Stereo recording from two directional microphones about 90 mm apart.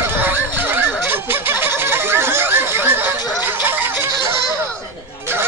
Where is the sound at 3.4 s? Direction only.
25° right (ahead or behind).